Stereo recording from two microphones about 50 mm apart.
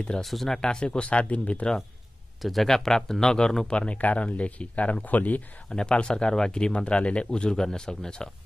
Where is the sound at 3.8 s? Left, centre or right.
Left.